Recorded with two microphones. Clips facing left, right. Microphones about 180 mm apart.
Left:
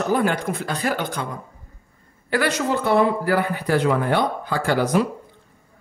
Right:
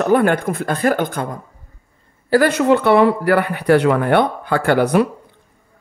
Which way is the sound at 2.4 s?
65° right (ahead or behind).